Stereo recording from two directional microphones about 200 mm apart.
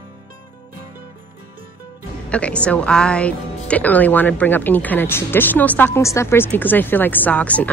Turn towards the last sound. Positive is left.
turn(degrees=5)  # may be behind; listen again after turning